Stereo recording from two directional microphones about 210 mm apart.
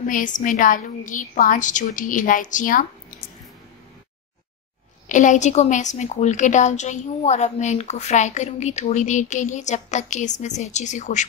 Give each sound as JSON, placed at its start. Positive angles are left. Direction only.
{"t": 0.0, "sound": "a woman's voice", "side_deg": 40}
{"t": 5.0, "sound": "a woman's voice", "side_deg": 35}